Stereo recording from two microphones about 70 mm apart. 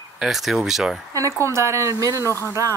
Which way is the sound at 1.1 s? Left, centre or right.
Right.